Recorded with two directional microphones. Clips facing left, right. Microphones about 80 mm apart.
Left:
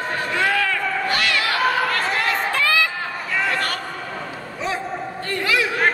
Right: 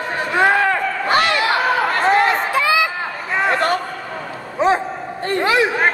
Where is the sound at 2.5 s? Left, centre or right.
Centre.